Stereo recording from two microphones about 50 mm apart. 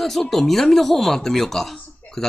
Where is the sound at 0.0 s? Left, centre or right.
Centre.